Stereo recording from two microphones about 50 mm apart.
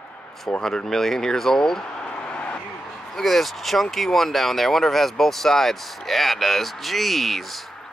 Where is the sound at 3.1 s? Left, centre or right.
Centre.